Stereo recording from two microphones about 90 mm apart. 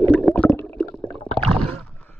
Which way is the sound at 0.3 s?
20° left (ahead or behind).